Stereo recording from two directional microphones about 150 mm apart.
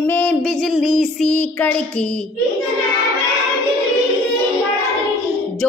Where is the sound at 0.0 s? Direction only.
10° left (ahead or behind).